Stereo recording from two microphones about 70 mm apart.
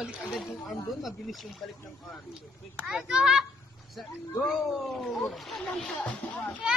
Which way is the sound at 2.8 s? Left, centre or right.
Centre.